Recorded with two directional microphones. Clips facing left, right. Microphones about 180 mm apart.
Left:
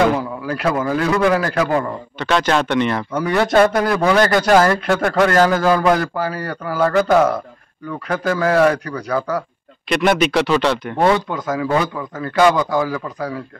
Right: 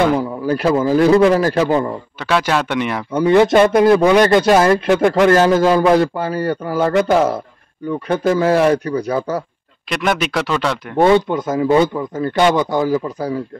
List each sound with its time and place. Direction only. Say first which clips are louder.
0.5 s a man's voice: right 5 dB; 30° right (ahead or behind)
2.1 s speech: left 1 dB; 5° right (ahead or behind)
3.3 s a man's voice: right 4 dB; 20° right (ahead or behind)
9.8 s speech: left 3 dB; centre (ahead or behind)
11.0 s a man's voice: right 6 dB; 25° right (ahead or behind)